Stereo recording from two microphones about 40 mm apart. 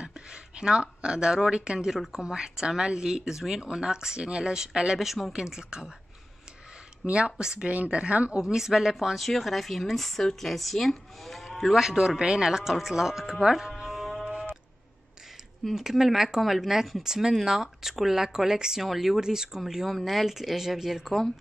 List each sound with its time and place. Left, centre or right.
0.0 s speech: right
5.0 s speech: centre
5.3 s speech: centre
7.1 s speech: right
7.6 s a woman's voice: right
8.4 s speech: centre
11.7 s speech: centre
13.7 s music: centre
15.7 s speech: centre
19.1 s speech: centre
19.9 s speech: centre